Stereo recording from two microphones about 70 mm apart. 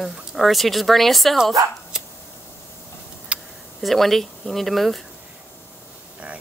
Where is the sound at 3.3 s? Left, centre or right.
Centre.